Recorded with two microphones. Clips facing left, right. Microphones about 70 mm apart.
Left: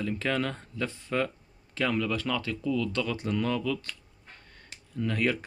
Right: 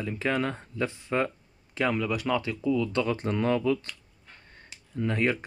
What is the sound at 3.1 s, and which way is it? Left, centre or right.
Speech, right.